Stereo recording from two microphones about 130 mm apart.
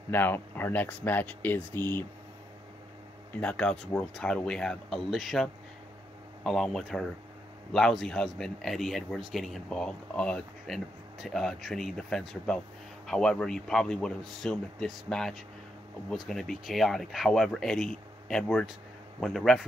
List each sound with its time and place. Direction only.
0.1 s speech: 15° left (ahead or behind)
3.3 s a man's voice: 10° left (ahead or behind)